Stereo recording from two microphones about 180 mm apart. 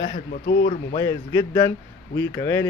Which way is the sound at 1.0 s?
25° left (ahead or behind).